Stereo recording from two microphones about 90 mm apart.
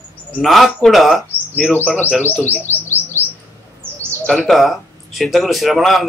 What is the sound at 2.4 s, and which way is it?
Chirp, 20° left (ahead or behind).